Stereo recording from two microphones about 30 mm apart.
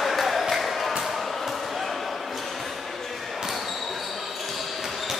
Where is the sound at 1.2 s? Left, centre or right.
Centre.